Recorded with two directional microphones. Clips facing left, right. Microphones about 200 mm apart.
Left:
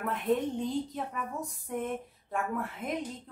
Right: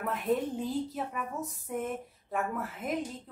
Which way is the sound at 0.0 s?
Centre (ahead or behind).